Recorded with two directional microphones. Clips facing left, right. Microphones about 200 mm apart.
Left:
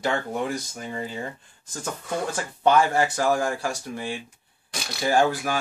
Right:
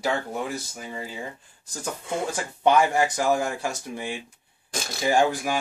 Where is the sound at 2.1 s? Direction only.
20° right (ahead or behind).